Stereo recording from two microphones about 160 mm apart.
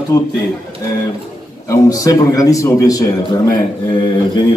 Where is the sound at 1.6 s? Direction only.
20° left (ahead or behind).